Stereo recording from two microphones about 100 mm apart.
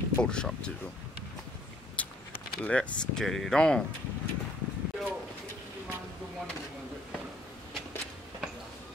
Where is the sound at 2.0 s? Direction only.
15° left (ahead or behind).